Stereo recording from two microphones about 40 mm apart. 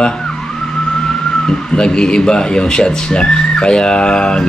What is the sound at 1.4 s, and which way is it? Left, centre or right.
Speech, left.